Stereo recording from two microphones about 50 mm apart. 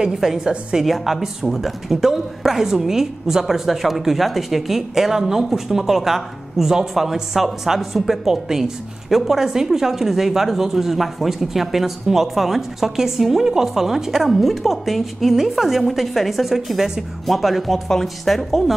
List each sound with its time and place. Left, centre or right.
0.0 s a woman's voice: centre
0.8 s speech: centre